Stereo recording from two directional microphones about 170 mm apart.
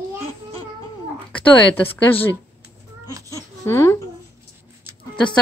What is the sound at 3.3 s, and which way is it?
Baby cry, 15° left (ahead or behind).